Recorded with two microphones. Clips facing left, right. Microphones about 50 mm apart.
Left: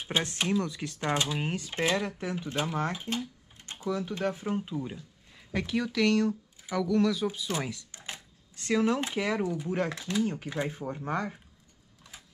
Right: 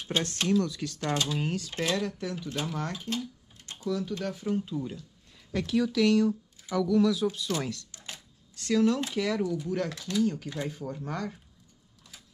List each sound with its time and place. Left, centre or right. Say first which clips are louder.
0.0 s speech: even; centre
7.2 s speech: right 2 dB; centre